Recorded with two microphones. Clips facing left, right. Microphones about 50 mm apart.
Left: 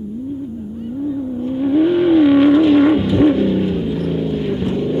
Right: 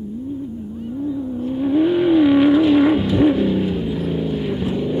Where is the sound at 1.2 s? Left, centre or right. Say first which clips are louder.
Left 2 dB; centre.